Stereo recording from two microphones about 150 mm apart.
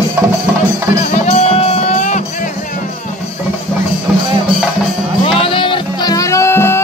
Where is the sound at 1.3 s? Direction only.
45° left (ahead or behind).